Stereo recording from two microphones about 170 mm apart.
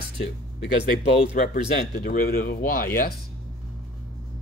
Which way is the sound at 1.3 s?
55° left (ahead or behind).